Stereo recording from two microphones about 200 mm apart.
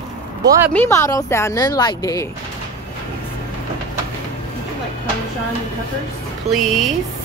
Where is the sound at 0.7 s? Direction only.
15° left (ahead or behind).